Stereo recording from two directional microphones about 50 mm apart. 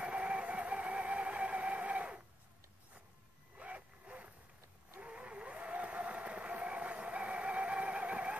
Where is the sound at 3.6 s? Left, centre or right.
Right.